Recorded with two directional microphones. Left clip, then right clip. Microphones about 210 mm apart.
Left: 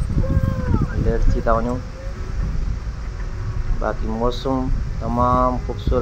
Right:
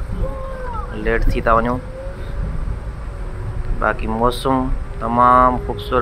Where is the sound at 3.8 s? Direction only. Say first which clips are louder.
Right 5 dB; 20° right (ahead or behind).